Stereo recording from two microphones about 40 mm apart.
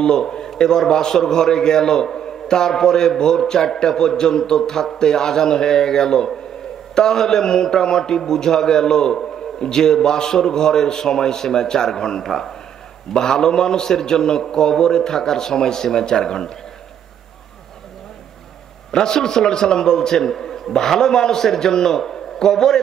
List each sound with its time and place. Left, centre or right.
0.0 s a man's voice: centre
18.9 s a man's voice: centre